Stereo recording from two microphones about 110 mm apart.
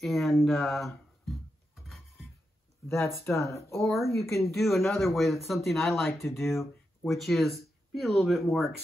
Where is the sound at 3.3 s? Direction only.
25° left (ahead or behind).